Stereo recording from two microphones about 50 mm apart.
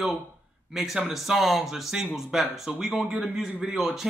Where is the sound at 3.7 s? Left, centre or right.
Centre.